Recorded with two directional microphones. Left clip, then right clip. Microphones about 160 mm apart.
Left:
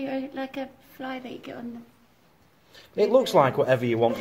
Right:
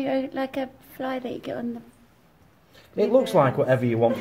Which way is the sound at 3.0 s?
15° left (ahead or behind).